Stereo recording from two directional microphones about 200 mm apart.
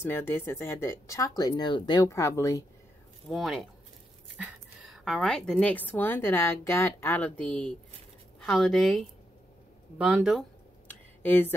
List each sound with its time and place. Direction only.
0.0 s a woman's voice: 10° left (ahead or behind)
3.3 s a woman's voice: centre (ahead or behind)
10.9 s a sound: 10° left (ahead or behind)